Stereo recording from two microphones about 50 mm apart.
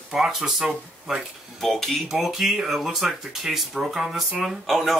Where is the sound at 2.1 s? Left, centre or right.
Centre.